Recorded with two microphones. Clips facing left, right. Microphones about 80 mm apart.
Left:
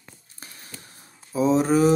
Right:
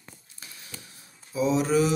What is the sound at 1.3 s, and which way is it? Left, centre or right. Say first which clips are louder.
Speech: left 3 dB; left.